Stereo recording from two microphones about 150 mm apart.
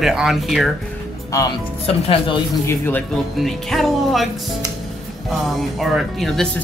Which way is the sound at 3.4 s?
Centre (ahead or behind).